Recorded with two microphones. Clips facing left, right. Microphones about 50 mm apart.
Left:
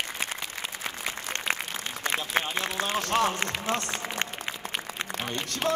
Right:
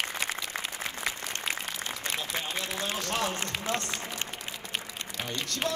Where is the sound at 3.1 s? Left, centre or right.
Left.